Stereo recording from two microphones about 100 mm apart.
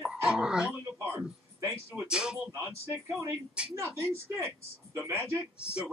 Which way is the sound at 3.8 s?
25° right (ahead or behind).